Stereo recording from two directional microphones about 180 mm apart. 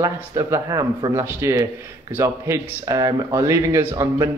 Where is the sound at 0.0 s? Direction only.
15° right (ahead or behind).